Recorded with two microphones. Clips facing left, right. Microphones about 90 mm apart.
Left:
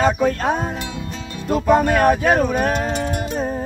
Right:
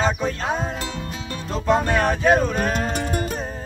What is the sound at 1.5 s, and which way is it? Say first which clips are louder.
Speech: left 5 dB; 10° left (ahead or behind).